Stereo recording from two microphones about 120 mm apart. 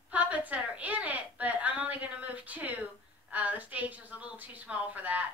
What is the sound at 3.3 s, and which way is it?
Speech, 15° right (ahead or behind).